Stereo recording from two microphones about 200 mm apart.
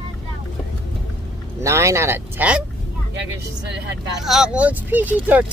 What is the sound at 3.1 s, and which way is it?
Speech, 60° right (ahead or behind).